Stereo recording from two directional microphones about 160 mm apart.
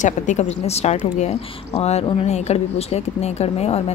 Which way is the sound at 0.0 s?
50° left (ahead or behind).